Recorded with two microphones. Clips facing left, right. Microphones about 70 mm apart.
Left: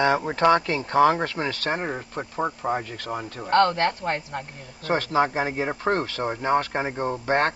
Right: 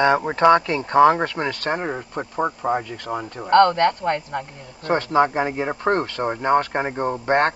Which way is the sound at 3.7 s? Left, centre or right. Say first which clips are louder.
Right 5 dB; right.